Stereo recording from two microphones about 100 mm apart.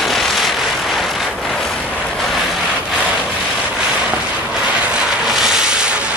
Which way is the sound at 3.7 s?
10° right (ahead or behind).